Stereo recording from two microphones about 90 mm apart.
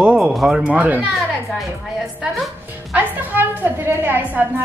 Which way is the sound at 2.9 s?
20° right (ahead or behind).